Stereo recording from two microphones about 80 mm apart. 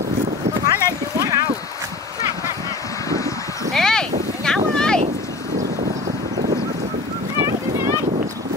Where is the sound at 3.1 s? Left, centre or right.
Left.